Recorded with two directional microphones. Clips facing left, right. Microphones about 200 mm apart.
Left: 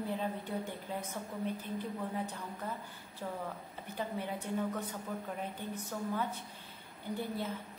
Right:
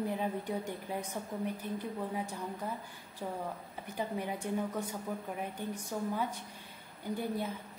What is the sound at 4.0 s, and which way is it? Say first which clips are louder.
A woman's voice: right 2 dB; 15° right (ahead or behind).